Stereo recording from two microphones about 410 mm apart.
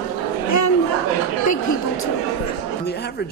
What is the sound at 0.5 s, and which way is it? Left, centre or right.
Chatter, left.